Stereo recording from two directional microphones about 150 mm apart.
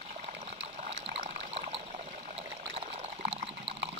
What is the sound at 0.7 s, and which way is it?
Water, 50° right (ahead or behind).